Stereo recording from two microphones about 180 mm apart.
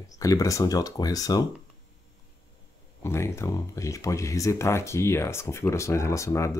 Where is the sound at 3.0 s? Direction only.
15° left (ahead or behind).